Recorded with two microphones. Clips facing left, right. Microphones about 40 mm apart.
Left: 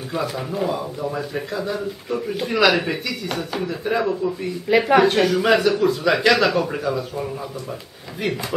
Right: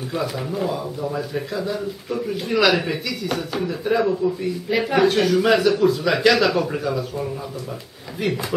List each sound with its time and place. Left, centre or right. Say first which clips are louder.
0.1 s speech: left 1 dB; centre
4.6 s speech: left 6 dB; left
4.9 s speech: right 1 dB; centre